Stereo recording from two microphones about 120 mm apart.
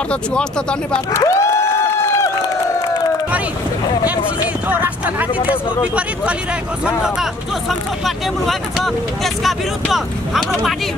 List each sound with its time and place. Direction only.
0.1 s speech: 10° left (ahead or behind)
1.1 s speech: 25° left (ahead or behind)
4.6 s speech: 15° right (ahead or behind)
8.0 s speech: centre (ahead or behind)